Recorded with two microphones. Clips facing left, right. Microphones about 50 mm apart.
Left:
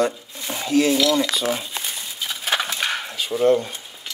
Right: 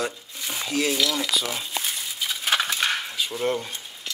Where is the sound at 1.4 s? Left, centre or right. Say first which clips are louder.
Left 4 dB; centre.